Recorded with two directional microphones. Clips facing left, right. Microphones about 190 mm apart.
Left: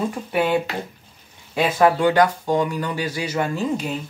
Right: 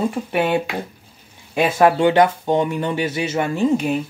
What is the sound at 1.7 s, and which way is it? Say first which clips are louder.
Speech: right 2 dB; 25° right (ahead or behind).